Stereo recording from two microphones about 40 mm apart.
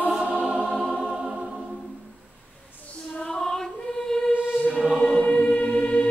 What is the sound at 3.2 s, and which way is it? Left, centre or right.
Female singing, centre.